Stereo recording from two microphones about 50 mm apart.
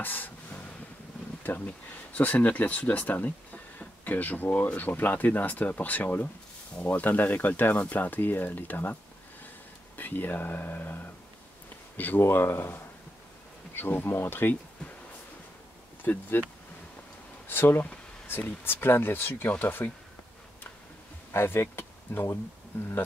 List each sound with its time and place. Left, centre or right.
0.0 s a sound: left
2.1 s speech: left
9.9 s speech: left
12.2 s speech: left
16.0 s speech: left
17.5 s speech: left
21.3 s speech: left